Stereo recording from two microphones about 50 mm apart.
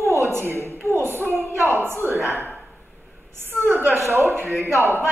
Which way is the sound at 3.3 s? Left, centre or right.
Right.